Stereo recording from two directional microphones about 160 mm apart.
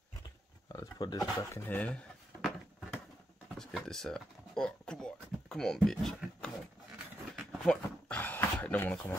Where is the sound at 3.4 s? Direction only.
Centre (ahead or behind).